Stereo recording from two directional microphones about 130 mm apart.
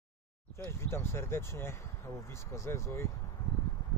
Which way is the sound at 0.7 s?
20° left (ahead or behind).